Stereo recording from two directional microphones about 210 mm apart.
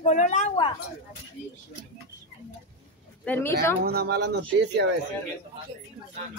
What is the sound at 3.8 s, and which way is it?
Speech, 50° right (ahead or behind).